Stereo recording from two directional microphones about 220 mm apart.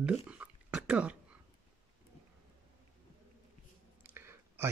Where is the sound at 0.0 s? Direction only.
5° right (ahead or behind).